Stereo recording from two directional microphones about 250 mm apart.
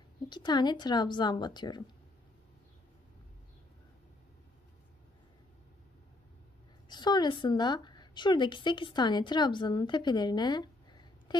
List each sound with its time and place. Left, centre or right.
0.3 s a woman's voice: centre
6.9 s a woman's voice: centre